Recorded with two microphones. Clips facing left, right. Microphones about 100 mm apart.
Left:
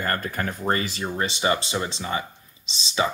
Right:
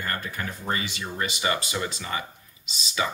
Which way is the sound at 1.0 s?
30° left (ahead or behind).